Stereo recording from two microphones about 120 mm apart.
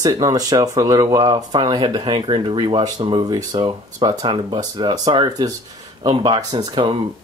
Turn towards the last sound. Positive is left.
turn(degrees=-35)  # may be behind; listen again after turning